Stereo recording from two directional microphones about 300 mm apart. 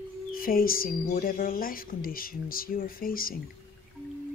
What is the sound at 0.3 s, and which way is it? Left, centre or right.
Speech, left.